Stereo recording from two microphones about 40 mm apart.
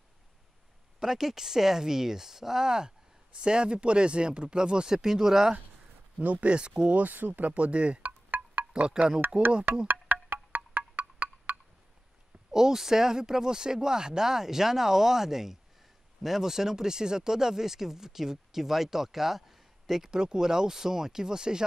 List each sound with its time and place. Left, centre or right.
0.9 s speech: centre
6.2 s speech: right
6.5 s speech: right
7.0 s speech: right
7.5 s speech: right
8.0 s wind chime: right
8.8 s speech: right
10.1 s music: right
12.4 s speech: centre
19.9 s speech: centre